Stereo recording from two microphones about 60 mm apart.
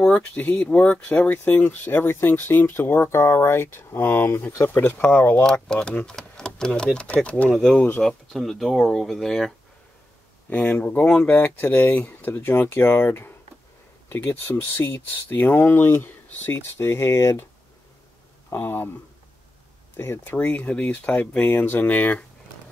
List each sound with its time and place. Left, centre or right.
0.0 s speech: left
4.6 s speech: left
5.3 s speech: centre
8.0 s speech: centre
10.8 s speech: left
18.5 s speech: left
20.2 s speech: left
21.5 s speech: left